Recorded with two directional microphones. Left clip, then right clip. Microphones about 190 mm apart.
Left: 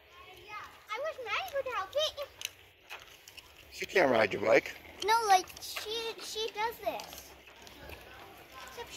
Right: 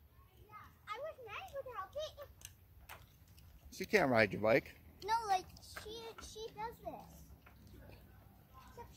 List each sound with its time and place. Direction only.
0.8 s a sound: 10° right (ahead or behind)
3.3 s speech: 5° right (ahead or behind)
5.0 s a child's voice: 30° right (ahead or behind)
5.6 s a child's voice: 5° right (ahead or behind)